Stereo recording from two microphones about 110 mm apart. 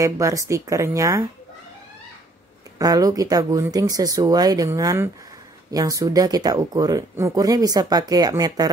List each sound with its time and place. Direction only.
0.0 s speech: 30° right (ahead or behind)
2.8 s speech: 35° right (ahead or behind)